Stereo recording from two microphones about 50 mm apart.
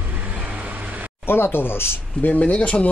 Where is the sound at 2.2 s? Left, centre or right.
Left.